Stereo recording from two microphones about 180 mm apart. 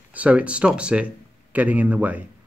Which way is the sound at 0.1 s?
5° right (ahead or behind).